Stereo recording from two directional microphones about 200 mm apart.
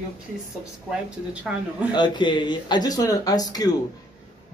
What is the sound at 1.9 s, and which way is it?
A man's voice, 25° left (ahead or behind).